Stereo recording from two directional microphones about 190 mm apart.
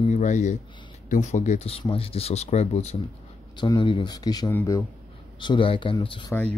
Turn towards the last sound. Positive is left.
turn(degrees=25)  # may be behind; listen again after turning